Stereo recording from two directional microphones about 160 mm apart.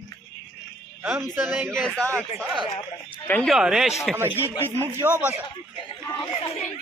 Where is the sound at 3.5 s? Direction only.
5° right (ahead or behind).